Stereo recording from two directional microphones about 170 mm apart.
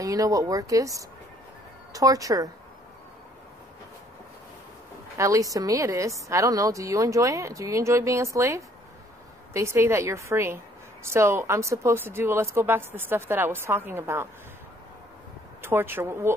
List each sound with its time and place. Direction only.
0.0 s a woman's voice: 20° right (ahead or behind)
5.1 s a woman's voice: 20° right (ahead or behind)
15.6 s a woman's voice: 15° right (ahead or behind)